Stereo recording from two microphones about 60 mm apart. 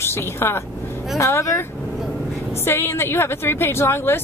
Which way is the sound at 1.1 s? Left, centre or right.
Left.